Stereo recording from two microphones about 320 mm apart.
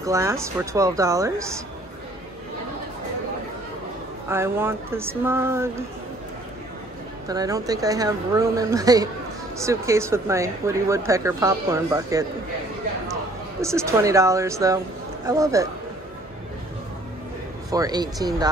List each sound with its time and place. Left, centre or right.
0.0 s speech: centre
4.3 s speech: centre
7.2 s speech: centre
13.6 s speech: centre
17.6 s speech: centre